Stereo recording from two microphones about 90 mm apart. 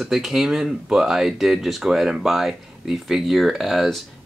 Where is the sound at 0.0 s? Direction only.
5° right (ahead or behind).